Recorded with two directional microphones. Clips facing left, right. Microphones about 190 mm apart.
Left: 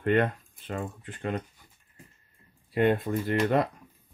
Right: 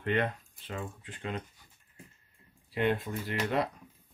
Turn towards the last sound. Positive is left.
turn(degrees=50)  # may be behind; listen again after turning